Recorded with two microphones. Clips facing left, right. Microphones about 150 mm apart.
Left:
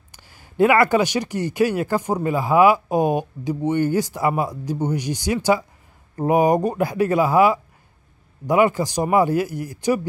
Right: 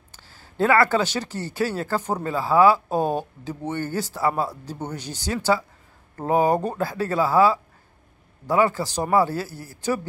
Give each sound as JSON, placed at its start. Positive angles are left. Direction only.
{"t": 0.1, "sound": "speech", "side_deg": 15}